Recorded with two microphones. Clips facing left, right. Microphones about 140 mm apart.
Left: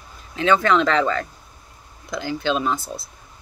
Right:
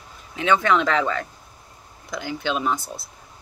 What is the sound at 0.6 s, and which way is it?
Speech, 10° right (ahead or behind).